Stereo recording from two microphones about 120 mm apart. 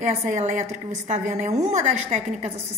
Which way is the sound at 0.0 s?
80° right.